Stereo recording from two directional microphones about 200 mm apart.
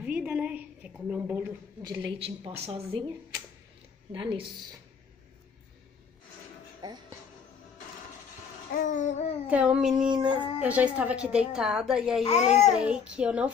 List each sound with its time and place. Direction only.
0.0 s a sound: 5° right (ahead or behind); by 2.5 s 25° right (ahead or behind)
2.6 s a woman's voice: 25° right (ahead or behind)
4.1 s a woman's voice: 25° right (ahead or behind)
8.8 s babbling: 40° left (ahead or behind)
9.5 s a woman's voice: 5° right (ahead or behind)
12.2 s babbling: 35° left (ahead or behind)
12.6 s a woman's voice: 5° right (ahead or behind)